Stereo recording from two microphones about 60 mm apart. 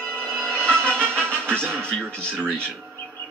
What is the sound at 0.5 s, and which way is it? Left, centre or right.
Music, centre.